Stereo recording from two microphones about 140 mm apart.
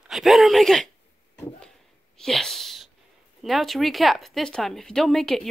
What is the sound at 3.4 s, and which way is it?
Speech, centre (ahead or behind).